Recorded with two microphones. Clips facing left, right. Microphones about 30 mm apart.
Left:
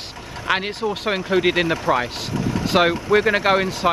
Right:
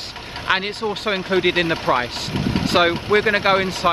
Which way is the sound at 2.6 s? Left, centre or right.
Centre.